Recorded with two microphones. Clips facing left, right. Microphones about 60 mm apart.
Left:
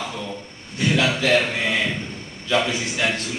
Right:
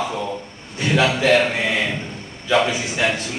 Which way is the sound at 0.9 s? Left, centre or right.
Right.